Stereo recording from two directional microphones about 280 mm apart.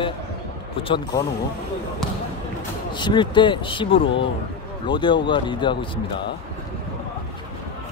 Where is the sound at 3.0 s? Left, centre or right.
Centre.